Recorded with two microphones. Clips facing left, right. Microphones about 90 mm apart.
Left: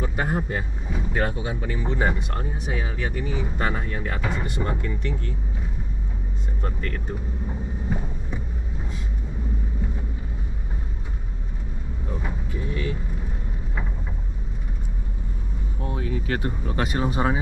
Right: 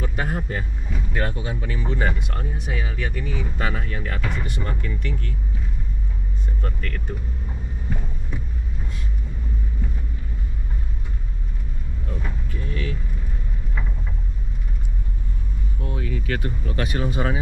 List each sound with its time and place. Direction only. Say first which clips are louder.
0.0 s speech: left 2 dB; 10° left (ahead or behind)
6.6 s speech: left 3 dB; 15° left (ahead or behind)
12.1 s vehicle: left 1 dB; 15° left (ahead or behind)
15.9 s speech: left 1 dB; 25° left (ahead or behind)